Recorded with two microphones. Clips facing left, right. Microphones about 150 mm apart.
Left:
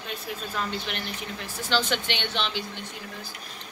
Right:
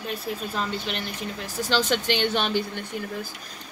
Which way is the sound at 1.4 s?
40° right (ahead or behind).